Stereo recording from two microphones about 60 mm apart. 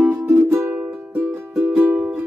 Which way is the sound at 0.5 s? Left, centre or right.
Right.